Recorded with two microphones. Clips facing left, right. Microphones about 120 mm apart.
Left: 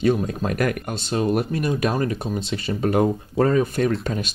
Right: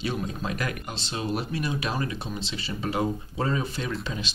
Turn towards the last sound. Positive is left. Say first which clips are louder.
# left 9 dB
turn(degrees=50)  # may be behind; listen again after turning